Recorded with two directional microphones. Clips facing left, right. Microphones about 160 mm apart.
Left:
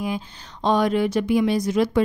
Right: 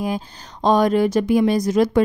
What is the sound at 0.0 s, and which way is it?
Speech, 40° right (ahead or behind).